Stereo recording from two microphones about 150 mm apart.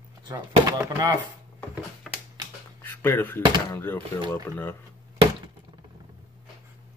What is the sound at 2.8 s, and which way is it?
Speech, 15° left (ahead or behind).